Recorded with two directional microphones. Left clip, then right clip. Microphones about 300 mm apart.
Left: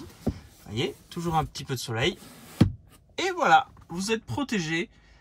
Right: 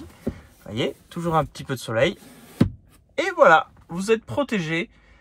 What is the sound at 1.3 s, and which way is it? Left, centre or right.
Speech, centre.